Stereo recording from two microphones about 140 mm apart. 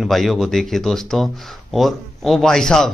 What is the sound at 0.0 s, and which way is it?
Speech, centre (ahead or behind).